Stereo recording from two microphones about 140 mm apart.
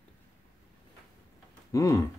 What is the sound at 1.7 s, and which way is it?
Speech, 20° left (ahead or behind).